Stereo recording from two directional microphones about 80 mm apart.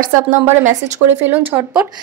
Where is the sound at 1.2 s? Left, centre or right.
Right.